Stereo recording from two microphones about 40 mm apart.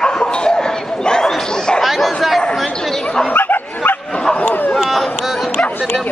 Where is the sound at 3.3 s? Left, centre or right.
Left.